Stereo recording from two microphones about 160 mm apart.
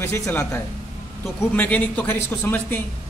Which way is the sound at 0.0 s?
15° left (ahead or behind).